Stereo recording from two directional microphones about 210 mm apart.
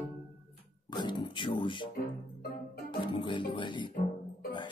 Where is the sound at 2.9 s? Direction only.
20° left (ahead or behind).